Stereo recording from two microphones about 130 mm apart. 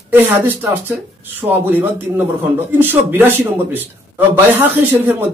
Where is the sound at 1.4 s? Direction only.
10° right (ahead or behind).